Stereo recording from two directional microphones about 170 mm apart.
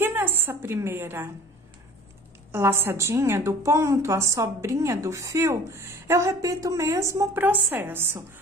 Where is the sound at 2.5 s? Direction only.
15° right (ahead or behind).